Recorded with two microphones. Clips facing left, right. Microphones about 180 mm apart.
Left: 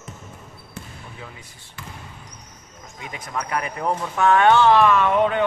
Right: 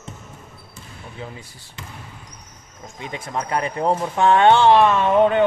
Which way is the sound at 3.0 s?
25° right (ahead or behind).